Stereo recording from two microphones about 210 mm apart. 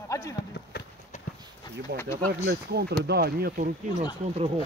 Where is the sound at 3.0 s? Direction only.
50° right (ahead or behind).